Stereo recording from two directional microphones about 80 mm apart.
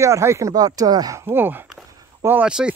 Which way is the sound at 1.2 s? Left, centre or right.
Right.